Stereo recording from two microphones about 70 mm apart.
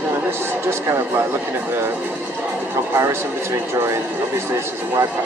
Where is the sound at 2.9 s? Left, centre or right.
Right.